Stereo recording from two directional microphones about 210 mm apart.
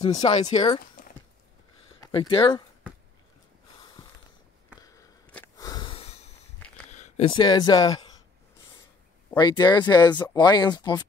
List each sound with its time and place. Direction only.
0.0 s speech: 20° left (ahead or behind)
2.0 s speech: 20° left (ahead or behind)
5.3 s a sound: 15° left (ahead or behind); by 6.3 s 30° left (ahead or behind)
6.9 s speech: 30° left (ahead or behind)
9.4 s speech: 20° left (ahead or behind)